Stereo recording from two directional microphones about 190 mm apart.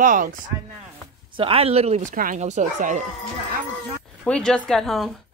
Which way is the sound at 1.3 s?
30° right (ahead or behind).